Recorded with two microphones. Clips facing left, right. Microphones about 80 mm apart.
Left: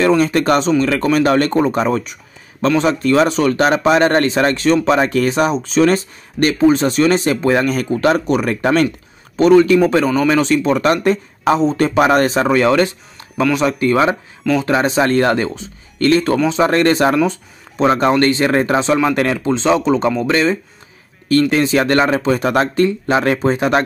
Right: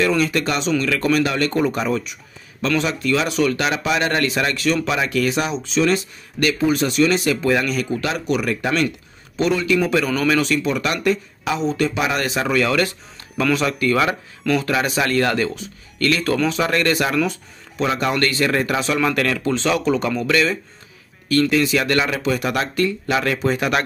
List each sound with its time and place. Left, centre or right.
0.0 s speech: left
14.4 s speech: centre
14.7 s speech: left